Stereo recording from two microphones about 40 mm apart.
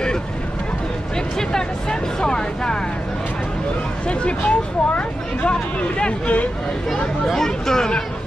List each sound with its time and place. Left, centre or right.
1.5 s vehicle: centre
4.1 s speech: left
7.2 s speech: centre